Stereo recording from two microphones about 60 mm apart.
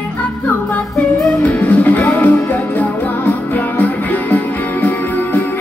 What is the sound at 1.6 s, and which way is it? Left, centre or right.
Music, left.